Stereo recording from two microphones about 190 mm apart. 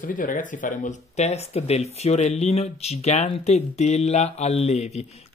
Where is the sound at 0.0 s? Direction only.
45° left (ahead or behind).